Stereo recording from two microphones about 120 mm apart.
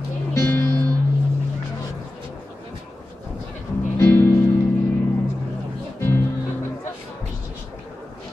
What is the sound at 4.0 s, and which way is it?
Music, 25° left (ahead or behind).